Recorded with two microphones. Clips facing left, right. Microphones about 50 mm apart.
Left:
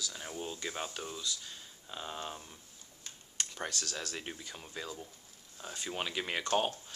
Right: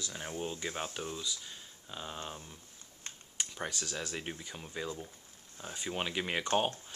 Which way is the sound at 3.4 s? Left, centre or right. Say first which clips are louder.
Even; centre.